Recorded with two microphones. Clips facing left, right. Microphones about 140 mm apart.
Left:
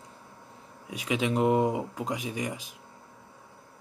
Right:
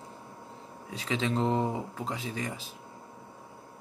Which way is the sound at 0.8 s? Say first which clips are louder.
Left 2 dB; 15° left (ahead or behind).